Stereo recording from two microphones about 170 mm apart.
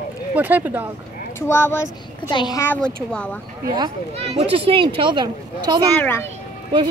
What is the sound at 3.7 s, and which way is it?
Speech, 30° right (ahead or behind).